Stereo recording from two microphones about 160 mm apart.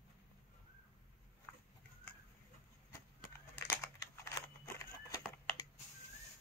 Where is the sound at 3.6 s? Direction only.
15° left (ahead or behind).